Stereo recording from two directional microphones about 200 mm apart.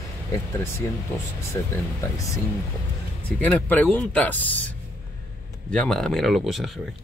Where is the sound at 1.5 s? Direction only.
15° left (ahead or behind).